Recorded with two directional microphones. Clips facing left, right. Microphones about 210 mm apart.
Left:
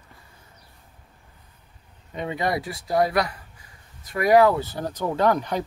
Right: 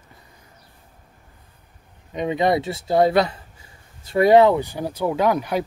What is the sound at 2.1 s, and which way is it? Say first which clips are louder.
Speech: right 6 dB; 20° right (ahead or behind).